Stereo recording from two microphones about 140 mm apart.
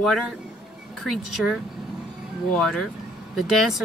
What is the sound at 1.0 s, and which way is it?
Speech, centre (ahead or behind).